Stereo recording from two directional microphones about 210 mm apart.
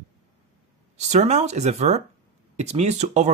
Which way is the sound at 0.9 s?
30° right (ahead or behind).